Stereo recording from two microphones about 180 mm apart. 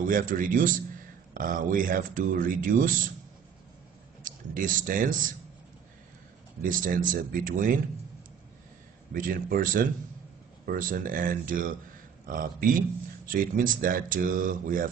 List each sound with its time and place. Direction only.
0.0 s speech: 50° right (ahead or behind)
4.2 s speech: 50° right (ahead or behind)
6.6 s speech: 50° right (ahead or behind)
9.1 s speech: 50° right (ahead or behind)